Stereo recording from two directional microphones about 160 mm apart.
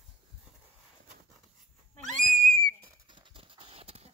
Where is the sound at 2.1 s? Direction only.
5° left (ahead or behind).